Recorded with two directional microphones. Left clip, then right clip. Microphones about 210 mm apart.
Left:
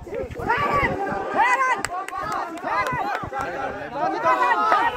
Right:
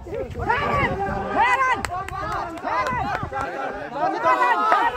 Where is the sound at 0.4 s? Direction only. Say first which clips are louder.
Even; 55° left (ahead or behind).